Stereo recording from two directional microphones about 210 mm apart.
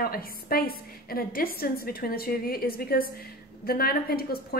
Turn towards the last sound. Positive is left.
turn(degrees=45)  # may be behind; listen again after turning